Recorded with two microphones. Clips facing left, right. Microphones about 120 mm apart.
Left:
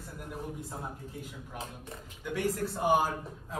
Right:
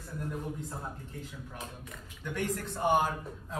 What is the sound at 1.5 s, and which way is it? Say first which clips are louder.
Speech: left 5 dB; 30° left (ahead or behind).